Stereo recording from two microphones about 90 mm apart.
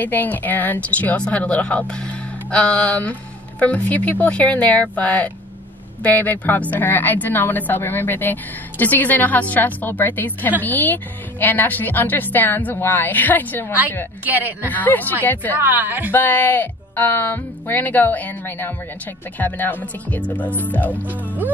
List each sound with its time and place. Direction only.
0.0 s speech: 20° left (ahead or behind)
14.2 s speech: 20° right (ahead or behind)
14.7 s speech: 20° left (ahead or behind)
15.6 s speech: 20° right (ahead or behind)
16.1 s speech: 20° left (ahead or behind)